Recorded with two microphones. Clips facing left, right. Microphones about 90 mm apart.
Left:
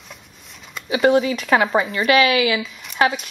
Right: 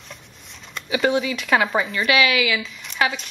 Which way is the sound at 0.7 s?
5° left (ahead or behind).